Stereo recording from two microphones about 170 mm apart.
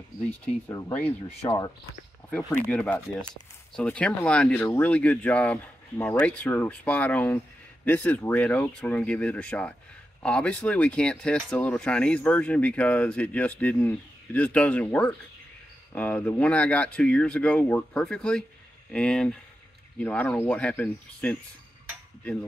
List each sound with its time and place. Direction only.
0.7 s speech: 20° left (ahead or behind)
2.7 s speech: 5° left (ahead or behind)